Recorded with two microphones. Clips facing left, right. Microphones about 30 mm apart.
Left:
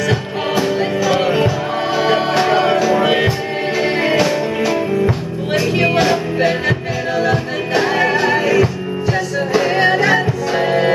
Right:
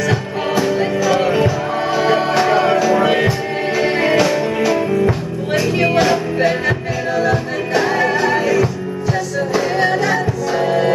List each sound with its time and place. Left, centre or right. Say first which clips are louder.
0.0 s music: even; centre